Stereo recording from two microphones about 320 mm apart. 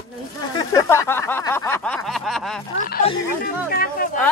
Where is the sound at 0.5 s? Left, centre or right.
Centre.